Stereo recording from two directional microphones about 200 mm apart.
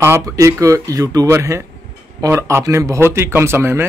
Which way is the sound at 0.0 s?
15° right (ahead or behind).